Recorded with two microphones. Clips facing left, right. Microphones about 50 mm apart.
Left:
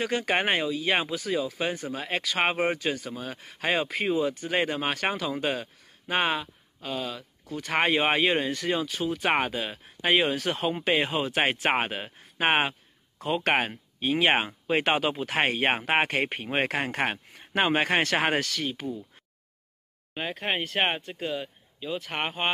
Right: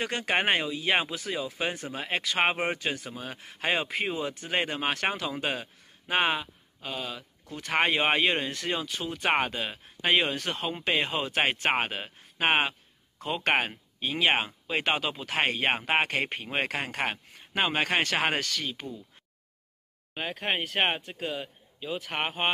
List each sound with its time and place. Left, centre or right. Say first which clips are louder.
0.0 s speech: left 1 dB; centre
14.3 s speech: left 3 dB; centre
14.8 s speech: left 2 dB; centre
20.2 s speech: left 1 dB; centre